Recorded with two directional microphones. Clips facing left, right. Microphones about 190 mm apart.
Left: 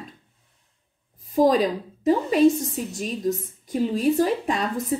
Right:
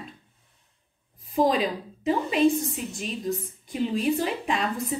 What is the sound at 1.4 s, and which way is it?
Speech, 40° left (ahead or behind).